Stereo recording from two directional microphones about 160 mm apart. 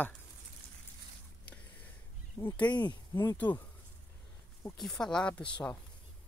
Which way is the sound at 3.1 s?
15° left (ahead or behind).